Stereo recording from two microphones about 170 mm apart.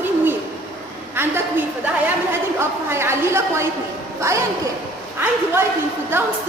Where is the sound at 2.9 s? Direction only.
15° right (ahead or behind).